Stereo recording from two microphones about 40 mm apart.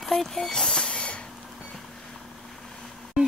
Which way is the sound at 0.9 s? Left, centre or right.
Left.